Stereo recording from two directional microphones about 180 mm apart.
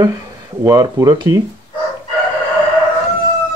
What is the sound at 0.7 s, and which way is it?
Speech, 20° right (ahead or behind).